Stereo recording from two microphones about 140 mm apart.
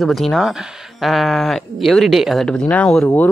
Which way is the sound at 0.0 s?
Centre (ahead or behind).